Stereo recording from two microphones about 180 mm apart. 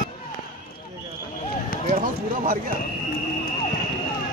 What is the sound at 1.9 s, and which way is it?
Speech, 50° right (ahead or behind).